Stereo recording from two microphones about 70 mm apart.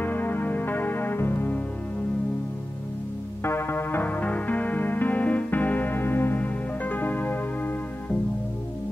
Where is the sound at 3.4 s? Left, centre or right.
Left.